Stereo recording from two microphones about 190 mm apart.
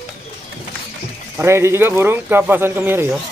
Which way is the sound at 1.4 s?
15° right (ahead or behind).